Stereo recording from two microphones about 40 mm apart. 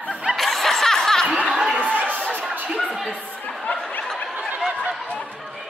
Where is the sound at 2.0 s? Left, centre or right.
Right.